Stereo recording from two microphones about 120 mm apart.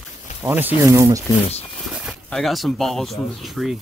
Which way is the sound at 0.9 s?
25° right (ahead or behind).